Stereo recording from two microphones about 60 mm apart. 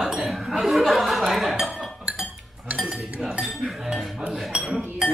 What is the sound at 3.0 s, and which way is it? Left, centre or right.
Speech, centre.